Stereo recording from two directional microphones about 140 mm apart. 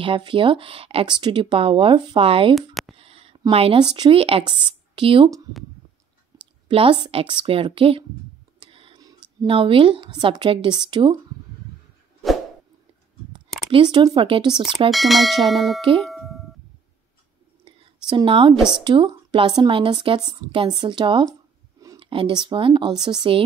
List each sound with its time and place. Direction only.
0.0 s speech: 40° right (ahead or behind)
2.5 s a sound: centre (ahead or behind)
3.0 s speech: 45° right (ahead or behind)
6.3 s a sound: 30° right (ahead or behind)
6.7 s speech: 40° right (ahead or behind)
8.6 s a sound: 40° right (ahead or behind)
9.5 s speech: 40° right (ahead or behind)
13.7 s speech: 35° right (ahead or behind)
14.9 s bell: centre (ahead or behind)
16.0 s doorbell: centre (ahead or behind)
18.0 s speech: 35° right (ahead or behind)